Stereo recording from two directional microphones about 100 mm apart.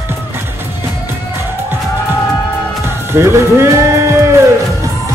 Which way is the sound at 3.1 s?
25° right (ahead or behind).